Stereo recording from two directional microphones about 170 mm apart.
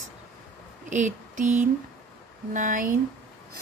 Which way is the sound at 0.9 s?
45° right (ahead or behind).